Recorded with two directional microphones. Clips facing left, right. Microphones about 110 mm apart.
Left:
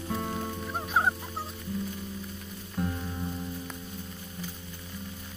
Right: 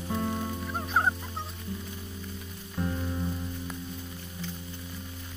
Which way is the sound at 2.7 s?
Centre (ahead or behind).